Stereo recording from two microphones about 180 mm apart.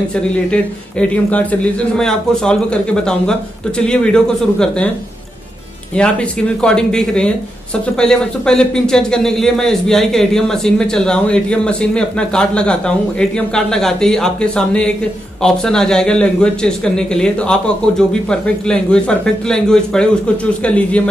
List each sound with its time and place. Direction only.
0.1 s speech: 5° left (ahead or behind)
5.9 s a man's voice: 5° left (ahead or behind)